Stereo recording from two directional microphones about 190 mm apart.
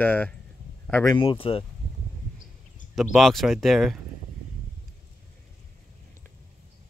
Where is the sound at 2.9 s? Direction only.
Centre (ahead or behind).